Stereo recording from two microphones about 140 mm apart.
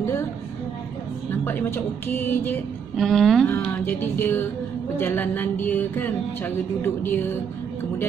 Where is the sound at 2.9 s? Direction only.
Centre (ahead or behind).